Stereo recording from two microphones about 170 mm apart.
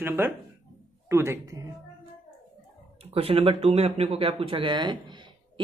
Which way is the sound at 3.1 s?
35° right (ahead or behind).